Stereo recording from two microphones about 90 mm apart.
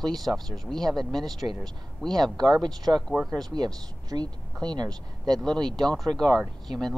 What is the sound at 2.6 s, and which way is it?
Speech, 50° right (ahead or behind).